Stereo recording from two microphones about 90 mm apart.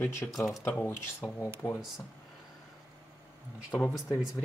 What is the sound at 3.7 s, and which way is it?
Speech, 20° left (ahead or behind).